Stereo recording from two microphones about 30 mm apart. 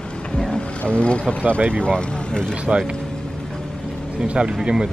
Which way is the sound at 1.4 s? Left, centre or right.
Right.